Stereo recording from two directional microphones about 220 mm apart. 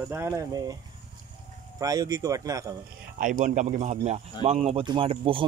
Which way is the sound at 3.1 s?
35° right (ahead or behind).